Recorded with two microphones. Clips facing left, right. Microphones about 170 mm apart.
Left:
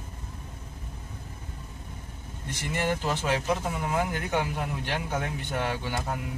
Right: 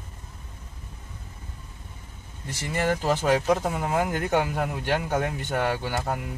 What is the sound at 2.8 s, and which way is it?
Speech, 45° right (ahead or behind).